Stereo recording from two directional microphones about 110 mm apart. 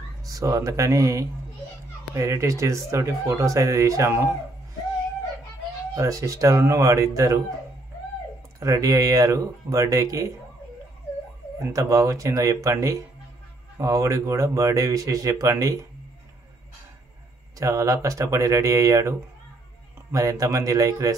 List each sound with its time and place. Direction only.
0.2 s speech: 30° right (ahead or behind)
5.9 s speech: 30° right (ahead or behind)
8.5 s speech: 30° right (ahead or behind)
11.6 s speech: 30° right (ahead or behind)
17.6 s speech: 30° right (ahead or behind)